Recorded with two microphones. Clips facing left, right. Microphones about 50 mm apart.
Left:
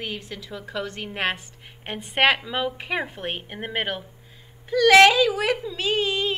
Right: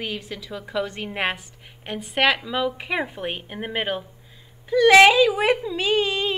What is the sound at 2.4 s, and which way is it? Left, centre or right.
Speech, centre.